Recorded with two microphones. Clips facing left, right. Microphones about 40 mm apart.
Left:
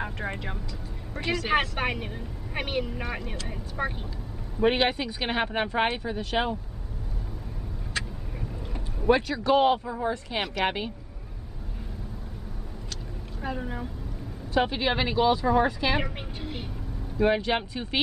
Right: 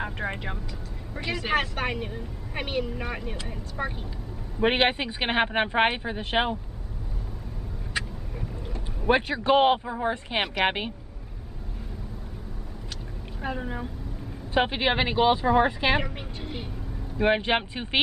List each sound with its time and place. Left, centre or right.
0.0 s speech: centre
1.5 s speech: centre
4.6 s speech: right
8.0 s vehicle: centre
9.0 s speech: right
13.4 s speech: centre
14.5 s speech: right
16.0 s speech: centre
17.2 s speech: right